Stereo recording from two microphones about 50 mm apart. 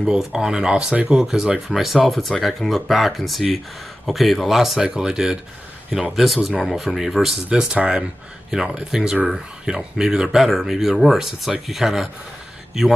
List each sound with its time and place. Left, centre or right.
0.2 s speech: centre
6.1 s speech: centre